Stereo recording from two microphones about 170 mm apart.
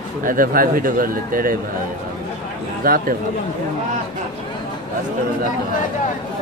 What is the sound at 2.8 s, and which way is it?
Speech, 60° right (ahead or behind).